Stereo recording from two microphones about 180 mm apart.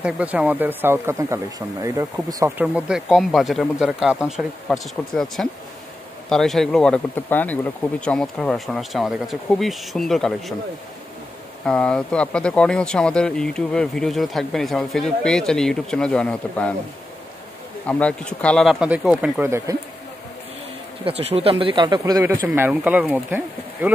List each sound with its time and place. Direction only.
0.0 s speech: 5° right (ahead or behind)
2.6 s speech: 5° right (ahead or behind)
11.6 s speech: 5° left (ahead or behind)
17.8 s speech: 5° left (ahead or behind); by 19.8 s 15° right (ahead or behind)
21.0 s speech: 35° right (ahead or behind); by 22.4 s 20° right (ahead or behind)
22.5 s speech: 5° right (ahead or behind)